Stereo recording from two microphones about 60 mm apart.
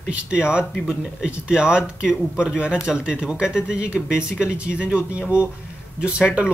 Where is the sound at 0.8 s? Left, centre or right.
Centre.